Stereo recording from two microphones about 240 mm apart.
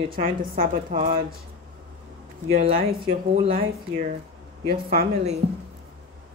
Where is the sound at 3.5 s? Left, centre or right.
Right.